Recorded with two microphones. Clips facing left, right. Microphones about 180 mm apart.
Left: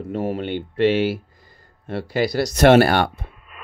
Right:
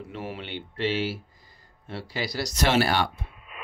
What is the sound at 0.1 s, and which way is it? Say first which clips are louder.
Speech: left 12 dB; 45° left (ahead or behind).